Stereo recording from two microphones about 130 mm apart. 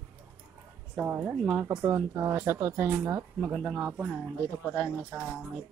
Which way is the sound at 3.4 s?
Centre (ahead or behind).